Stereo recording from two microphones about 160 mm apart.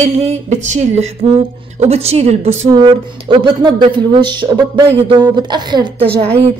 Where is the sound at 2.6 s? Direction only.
30° right (ahead or behind).